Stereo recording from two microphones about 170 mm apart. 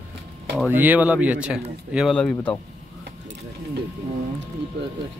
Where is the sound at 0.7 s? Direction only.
10° right (ahead or behind); by 2.6 s 5° left (ahead or behind).